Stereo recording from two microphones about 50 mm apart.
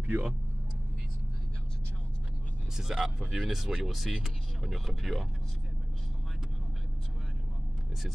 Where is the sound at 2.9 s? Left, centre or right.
Centre.